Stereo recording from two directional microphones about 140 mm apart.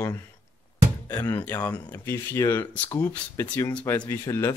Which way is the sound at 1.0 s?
25° left (ahead or behind).